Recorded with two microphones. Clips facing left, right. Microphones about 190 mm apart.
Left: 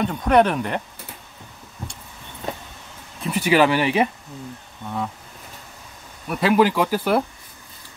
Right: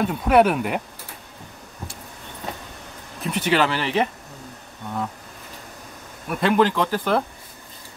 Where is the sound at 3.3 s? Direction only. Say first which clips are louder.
Left 3 dB; 10° left (ahead or behind).